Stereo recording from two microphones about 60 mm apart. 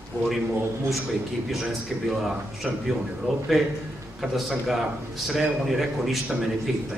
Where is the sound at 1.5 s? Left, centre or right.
Centre.